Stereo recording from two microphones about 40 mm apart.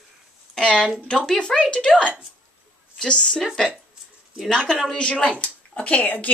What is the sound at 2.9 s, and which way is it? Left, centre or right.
Speech, centre.